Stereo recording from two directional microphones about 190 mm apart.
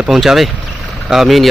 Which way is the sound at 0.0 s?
Centre (ahead or behind).